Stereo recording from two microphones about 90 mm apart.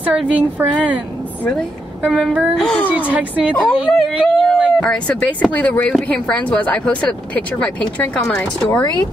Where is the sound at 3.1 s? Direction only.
15° right (ahead or behind).